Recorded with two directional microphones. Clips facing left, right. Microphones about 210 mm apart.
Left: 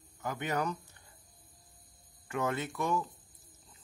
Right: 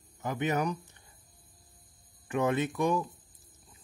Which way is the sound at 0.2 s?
20° right (ahead or behind).